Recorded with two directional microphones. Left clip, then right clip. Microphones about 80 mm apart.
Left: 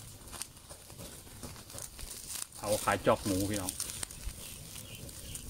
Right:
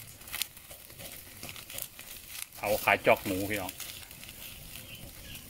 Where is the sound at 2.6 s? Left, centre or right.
Right.